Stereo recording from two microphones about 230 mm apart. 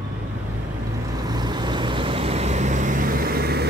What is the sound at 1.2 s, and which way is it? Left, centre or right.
Vehicle, centre.